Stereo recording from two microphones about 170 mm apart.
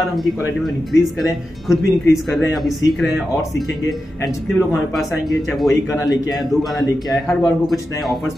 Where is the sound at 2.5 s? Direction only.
Centre (ahead or behind).